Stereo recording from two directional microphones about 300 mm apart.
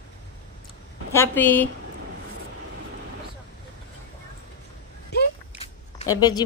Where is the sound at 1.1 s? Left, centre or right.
Centre.